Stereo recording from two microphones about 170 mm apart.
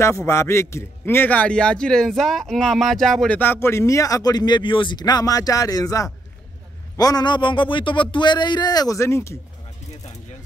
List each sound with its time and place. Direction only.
0.3 s a man's voice: 15° left (ahead or behind)